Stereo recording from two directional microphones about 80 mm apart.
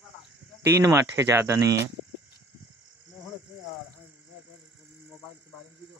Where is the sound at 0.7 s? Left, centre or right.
Right.